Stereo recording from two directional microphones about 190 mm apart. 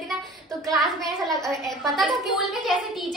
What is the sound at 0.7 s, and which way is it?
A woman's voice, centre (ahead or behind).